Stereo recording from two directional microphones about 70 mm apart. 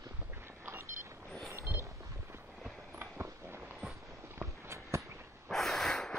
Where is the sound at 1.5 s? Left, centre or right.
Right.